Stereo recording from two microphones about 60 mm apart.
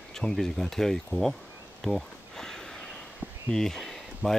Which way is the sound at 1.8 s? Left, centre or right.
Centre.